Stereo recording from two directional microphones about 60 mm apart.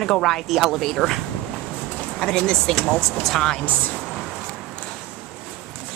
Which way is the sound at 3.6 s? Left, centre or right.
Left.